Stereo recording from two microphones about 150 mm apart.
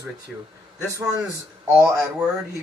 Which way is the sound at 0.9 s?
20° right (ahead or behind).